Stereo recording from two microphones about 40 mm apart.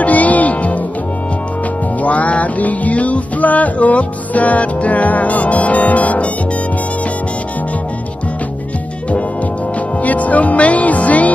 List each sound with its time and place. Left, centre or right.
0.0 s music: left
2.0 s music: left
10.0 s music: left